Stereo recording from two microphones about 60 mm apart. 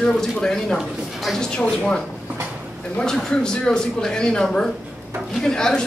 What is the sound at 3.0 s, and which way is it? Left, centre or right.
Speech, centre.